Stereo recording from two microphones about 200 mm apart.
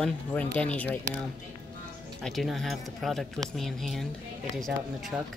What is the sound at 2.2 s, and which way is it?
Speech, centre (ahead or behind).